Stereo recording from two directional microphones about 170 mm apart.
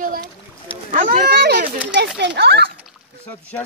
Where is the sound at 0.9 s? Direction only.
55° right (ahead or behind); by 2.7 s 80° right.